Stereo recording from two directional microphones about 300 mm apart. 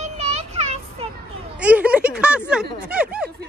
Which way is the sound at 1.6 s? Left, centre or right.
Centre.